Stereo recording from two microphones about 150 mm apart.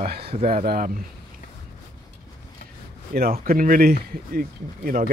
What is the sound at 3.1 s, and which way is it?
Speech, 80° right.